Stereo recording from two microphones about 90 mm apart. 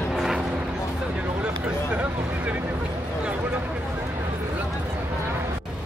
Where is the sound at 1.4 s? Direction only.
20° right (ahead or behind).